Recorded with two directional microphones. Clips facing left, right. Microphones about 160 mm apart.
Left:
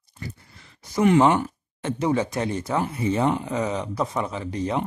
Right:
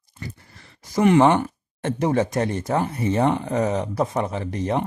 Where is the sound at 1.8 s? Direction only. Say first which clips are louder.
Right 2 dB; 50° right (ahead or behind).